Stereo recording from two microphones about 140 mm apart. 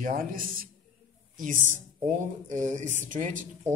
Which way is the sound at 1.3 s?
70° right (ahead or behind).